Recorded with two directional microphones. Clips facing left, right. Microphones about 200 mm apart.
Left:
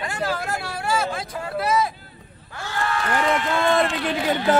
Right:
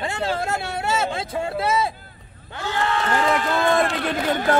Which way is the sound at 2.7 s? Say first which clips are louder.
Right 2 dB; 20° right (ahead or behind).